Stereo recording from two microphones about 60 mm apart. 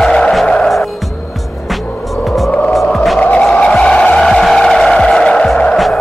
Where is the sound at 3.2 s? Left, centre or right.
Centre.